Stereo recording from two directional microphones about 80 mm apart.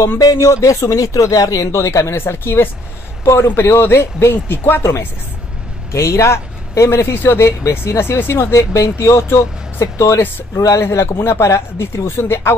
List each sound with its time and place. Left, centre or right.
0.2 s a man's voice: left
5.9 s a man's voice: left